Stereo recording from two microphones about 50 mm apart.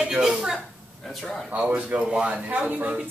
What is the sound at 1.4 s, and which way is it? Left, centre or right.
Speech, right.